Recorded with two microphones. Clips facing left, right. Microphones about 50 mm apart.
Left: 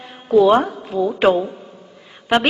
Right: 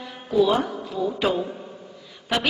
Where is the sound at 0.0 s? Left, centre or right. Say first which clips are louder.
Left 7 dB; left.